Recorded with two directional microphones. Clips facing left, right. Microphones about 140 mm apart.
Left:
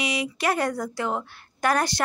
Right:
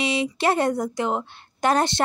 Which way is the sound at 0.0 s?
25° right (ahead or behind).